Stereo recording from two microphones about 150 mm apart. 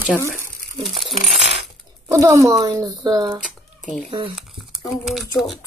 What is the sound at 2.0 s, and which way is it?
Speech, 20° right (ahead or behind).